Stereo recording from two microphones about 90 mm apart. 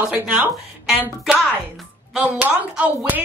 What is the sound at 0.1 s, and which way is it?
Speech, 15° right (ahead or behind).